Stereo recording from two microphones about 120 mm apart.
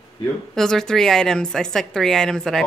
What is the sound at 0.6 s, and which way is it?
A woman's voice, 5° left (ahead or behind).